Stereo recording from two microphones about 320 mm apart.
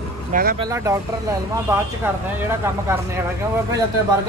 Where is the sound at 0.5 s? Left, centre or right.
Centre.